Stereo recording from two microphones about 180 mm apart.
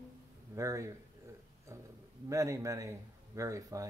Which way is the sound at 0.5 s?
15° right (ahead or behind).